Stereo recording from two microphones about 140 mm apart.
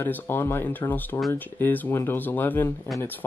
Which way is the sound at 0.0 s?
15° left (ahead or behind).